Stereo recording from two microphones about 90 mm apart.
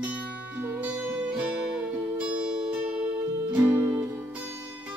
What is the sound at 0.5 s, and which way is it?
Music, 15° right (ahead or behind).